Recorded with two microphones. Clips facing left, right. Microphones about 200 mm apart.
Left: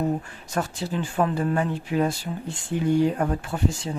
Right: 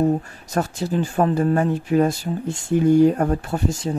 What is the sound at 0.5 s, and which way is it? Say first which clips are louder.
Speech: right 5 dB; 40° right (ahead or behind).